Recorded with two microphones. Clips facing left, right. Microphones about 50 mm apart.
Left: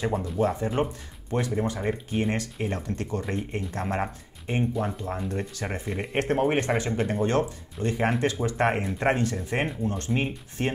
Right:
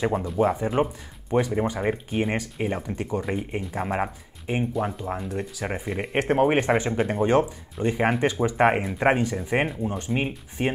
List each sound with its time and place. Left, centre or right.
0.4 s speech: centre